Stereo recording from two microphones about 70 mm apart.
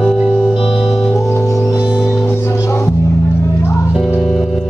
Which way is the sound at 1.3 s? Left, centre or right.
Left.